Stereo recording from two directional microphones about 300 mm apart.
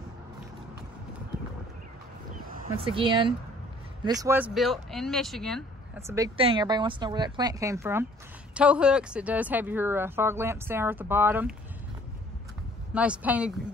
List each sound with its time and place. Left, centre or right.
2.4 s a sound: right
2.9 s speech: centre
5.9 s speech: centre
12.9 s speech: centre